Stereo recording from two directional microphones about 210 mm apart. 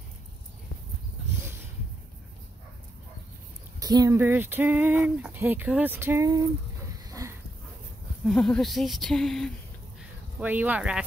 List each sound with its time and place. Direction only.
3.8 s speech: 15° right (ahead or behind)
7.1 s a sound: 15° right (ahead or behind)
8.2 s speech: centre (ahead or behind)
10.4 s speech: 10° right (ahead or behind)